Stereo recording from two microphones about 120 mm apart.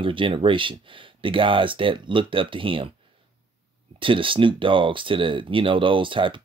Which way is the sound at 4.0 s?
45° right (ahead or behind).